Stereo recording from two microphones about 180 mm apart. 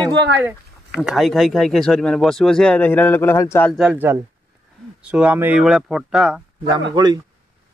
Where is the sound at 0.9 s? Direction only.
Centre (ahead or behind).